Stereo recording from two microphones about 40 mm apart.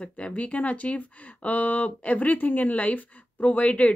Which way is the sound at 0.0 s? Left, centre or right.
Left.